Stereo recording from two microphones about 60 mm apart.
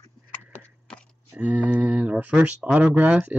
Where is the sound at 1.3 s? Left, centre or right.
Centre.